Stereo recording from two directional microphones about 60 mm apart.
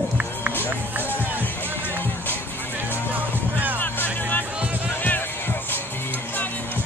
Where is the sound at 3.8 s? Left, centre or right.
Left.